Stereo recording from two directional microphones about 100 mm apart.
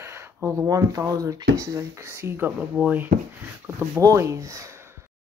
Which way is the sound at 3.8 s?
30° right (ahead or behind).